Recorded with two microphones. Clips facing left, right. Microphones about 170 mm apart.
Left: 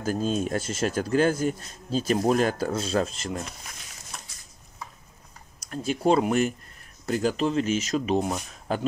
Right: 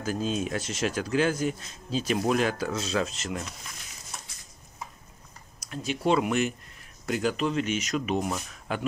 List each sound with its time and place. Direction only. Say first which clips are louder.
0.0 s speech: left 3 dB; 45° left (ahead or behind)
5.7 s speech: left 3 dB; 45° left (ahead or behind)